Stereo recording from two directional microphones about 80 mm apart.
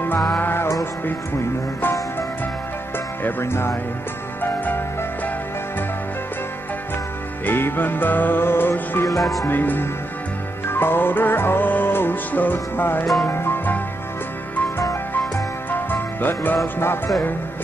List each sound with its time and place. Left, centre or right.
0.4 s music: left
3.3 s music: left
7.4 s music: left
9.5 s speech: left
10.7 s music: left
13.0 s music: centre
13.3 s music: left
14.8 s music: left
15.7 s music: left